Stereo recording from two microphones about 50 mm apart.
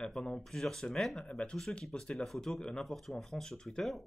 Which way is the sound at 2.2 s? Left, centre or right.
Centre.